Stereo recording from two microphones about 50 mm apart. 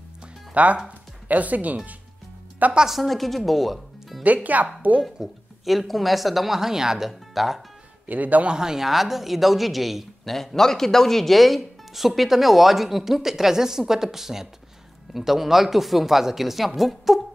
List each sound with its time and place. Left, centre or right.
0.6 s speech: right
2.9 s speech: centre
4.2 s speech: right
5.2 s speech: centre
8.1 s speech: right
8.5 s speech: centre